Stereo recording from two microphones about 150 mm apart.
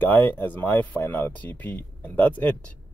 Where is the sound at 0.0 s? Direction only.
15° left (ahead or behind).